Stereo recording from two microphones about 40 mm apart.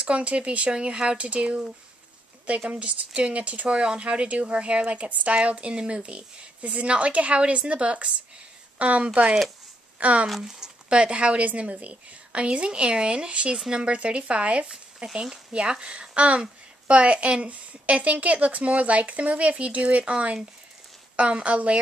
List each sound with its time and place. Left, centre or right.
0.0 s a woman's voice: right
2.7 s speech: right
10.4 s speech: centre
10.9 s a woman's voice: right
15.0 s a woman's voice: centre